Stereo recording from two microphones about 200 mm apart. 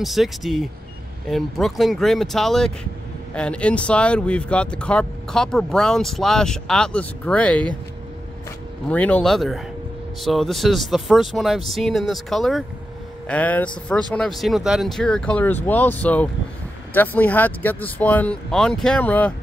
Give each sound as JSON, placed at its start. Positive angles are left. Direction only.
{"t": 0.0, "sound": "speech", "side_deg": 0}
{"t": 8.8, "sound": "speech", "side_deg": 5}